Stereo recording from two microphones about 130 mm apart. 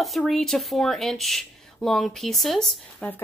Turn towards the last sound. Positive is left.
turn(degrees=0)  # may be behind; listen again after turning